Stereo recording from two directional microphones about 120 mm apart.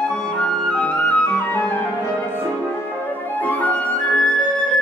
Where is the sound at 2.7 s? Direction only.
15° left (ahead or behind).